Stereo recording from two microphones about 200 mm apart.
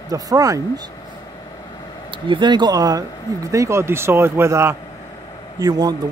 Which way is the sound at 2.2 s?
25° right (ahead or behind).